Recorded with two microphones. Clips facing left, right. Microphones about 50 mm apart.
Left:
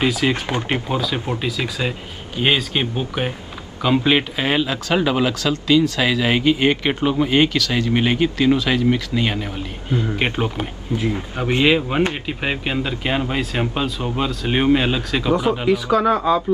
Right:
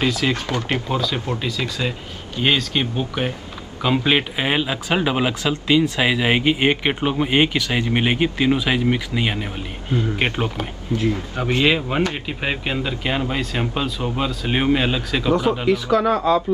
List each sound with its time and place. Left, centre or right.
0.0 s speech: centre
0.9 s speech: centre
3.8 s speech: centre
10.6 s speech: centre